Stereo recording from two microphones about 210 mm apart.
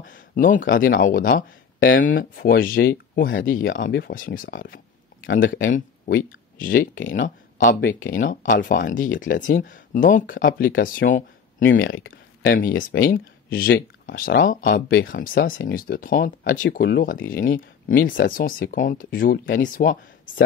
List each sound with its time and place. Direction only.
0.0 s speech: 40° left (ahead or behind)
11.6 s speech: 60° left (ahead or behind)
12.5 s speech: 40° left (ahead or behind)